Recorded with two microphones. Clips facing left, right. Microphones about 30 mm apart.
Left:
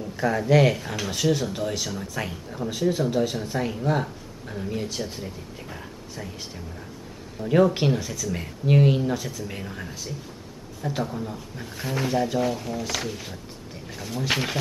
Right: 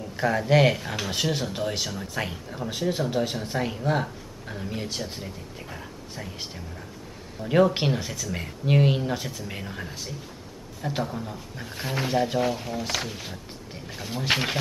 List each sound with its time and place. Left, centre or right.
0.2 s speech: centre
1.1 s speech: right; by 11.7 s centre
11.7 s speech: centre